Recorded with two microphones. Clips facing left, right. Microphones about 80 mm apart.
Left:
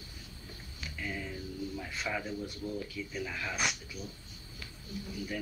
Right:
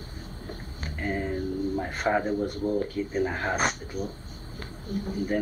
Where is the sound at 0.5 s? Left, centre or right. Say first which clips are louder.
Right 8 dB; right.